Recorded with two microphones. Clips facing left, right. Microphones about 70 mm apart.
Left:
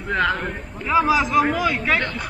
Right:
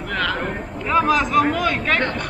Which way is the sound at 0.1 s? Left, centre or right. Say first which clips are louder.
Left 3 dB; left.